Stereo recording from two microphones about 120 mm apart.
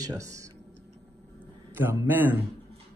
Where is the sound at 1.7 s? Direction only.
20° right (ahead or behind).